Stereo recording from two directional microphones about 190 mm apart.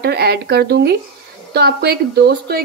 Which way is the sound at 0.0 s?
60° right (ahead or behind).